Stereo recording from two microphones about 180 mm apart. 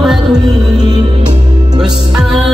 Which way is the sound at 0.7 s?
20° right (ahead or behind).